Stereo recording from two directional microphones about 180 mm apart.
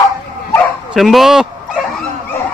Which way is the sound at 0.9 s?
Centre (ahead or behind).